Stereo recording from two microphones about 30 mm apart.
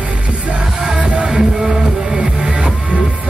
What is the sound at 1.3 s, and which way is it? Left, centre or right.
Music, centre.